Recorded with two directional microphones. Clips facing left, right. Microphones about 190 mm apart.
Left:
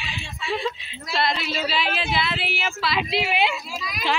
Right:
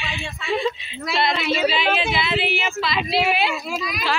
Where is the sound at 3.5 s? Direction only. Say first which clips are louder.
Right 5 dB; 70° right (ahead or behind).